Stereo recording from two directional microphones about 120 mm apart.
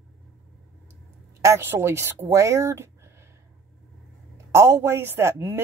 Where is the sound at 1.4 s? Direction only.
20° right (ahead or behind).